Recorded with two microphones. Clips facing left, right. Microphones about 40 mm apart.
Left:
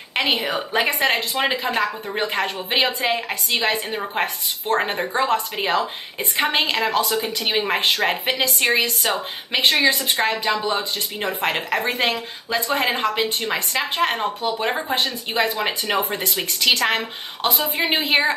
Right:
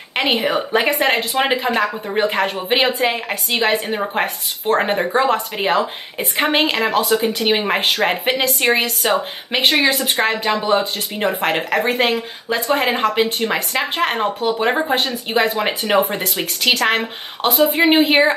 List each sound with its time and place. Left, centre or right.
0.1 s a woman's voice: centre
1.6 s speech: centre
10.1 s speech: right
11.4 s speech: centre